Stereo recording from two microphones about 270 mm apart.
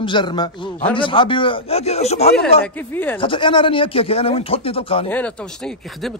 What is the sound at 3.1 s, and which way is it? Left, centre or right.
A man's voice, centre.